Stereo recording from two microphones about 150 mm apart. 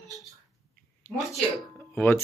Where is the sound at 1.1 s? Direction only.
20° left (ahead or behind).